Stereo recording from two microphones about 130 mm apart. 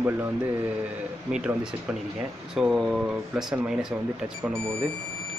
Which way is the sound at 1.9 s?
5° right (ahead or behind).